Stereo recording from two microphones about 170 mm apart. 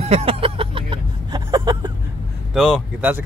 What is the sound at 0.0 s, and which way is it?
Vehicle, 40° right (ahead or behind).